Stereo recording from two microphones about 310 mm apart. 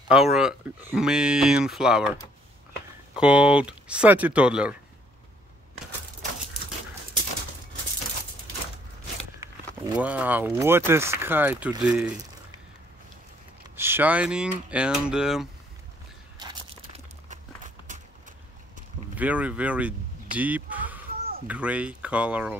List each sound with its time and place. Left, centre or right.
0.1 s speech: centre
3.2 s speech: centre
9.9 s speech: centre
13.7 s speech: centre
16.3 s a sound: centre
19.1 s speech: centre